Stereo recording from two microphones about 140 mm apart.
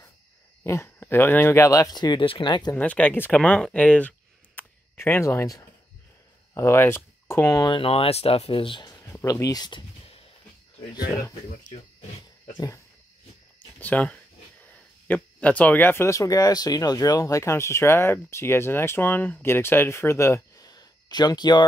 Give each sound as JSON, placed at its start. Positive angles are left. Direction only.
{"t": 0.7, "sound": "speech", "side_deg": 15}
{"t": 2.7, "sound": "speech", "side_deg": 10}
{"t": 4.6, "sound": "a sound", "side_deg": 15}
{"t": 6.5, "sound": "speech", "side_deg": 20}
{"t": 7.7, "sound": "speech", "side_deg": 40}
{"t": 9.0, "sound": "a sound", "side_deg": 15}
{"t": 12.5, "sound": "speech", "side_deg": 25}
{"t": 13.7, "sound": "speech", "side_deg": 10}